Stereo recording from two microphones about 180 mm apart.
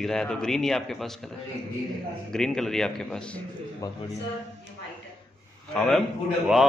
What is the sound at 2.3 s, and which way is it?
Speech, 5° left (ahead or behind).